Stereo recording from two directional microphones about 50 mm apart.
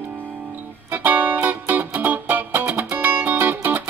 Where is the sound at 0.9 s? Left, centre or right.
Right.